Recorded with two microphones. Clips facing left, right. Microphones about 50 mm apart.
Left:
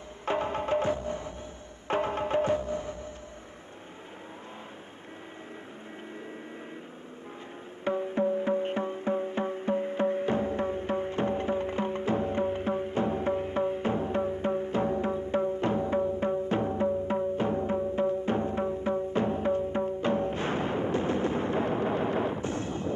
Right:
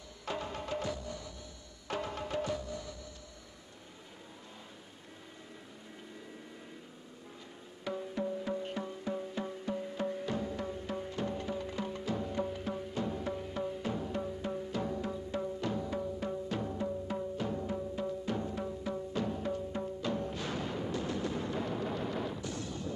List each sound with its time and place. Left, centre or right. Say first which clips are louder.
0.2 s music: left 9 dB; left
7.8 s music: left 9 dB; left